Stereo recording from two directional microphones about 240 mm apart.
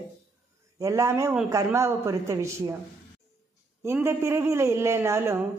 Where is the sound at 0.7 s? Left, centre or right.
Centre.